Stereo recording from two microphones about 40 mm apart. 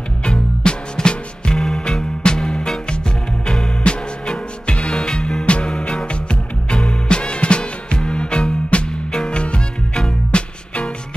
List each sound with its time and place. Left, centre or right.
0.2 s music: left
3.8 s music: left